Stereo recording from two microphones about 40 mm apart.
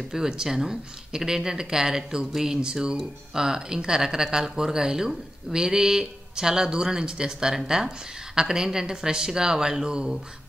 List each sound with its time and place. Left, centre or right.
0.1 s speech: centre